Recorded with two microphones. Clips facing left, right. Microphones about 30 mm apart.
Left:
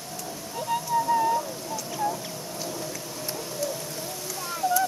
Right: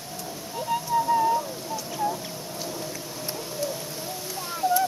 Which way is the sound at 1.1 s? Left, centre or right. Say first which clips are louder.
Right 1 dB; centre.